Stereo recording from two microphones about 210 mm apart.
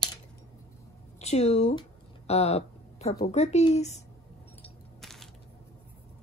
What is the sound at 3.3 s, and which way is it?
Speech, 30° left (ahead or behind).